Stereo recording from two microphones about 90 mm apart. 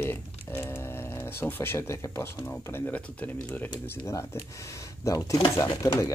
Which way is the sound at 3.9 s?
30° left (ahead or behind).